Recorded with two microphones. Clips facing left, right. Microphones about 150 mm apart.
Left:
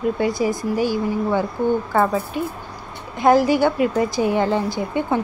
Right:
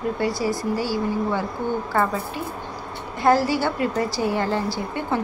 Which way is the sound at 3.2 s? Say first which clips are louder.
Left 4 dB; 15° left (ahead or behind).